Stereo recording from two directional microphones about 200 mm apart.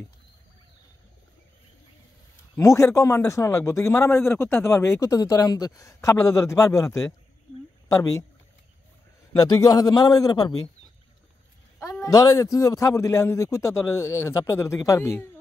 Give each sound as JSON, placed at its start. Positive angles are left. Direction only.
{"t": 2.5, "sound": "a man's voice", "side_deg": 15}
{"t": 9.3, "sound": "a man's voice", "side_deg": 15}
{"t": 11.8, "sound": "a man's voice", "side_deg": 15}